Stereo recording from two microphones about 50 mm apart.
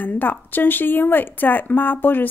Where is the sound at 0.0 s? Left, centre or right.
Left.